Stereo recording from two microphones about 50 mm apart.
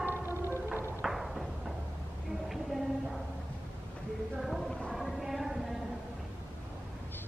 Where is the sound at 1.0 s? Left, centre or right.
Centre.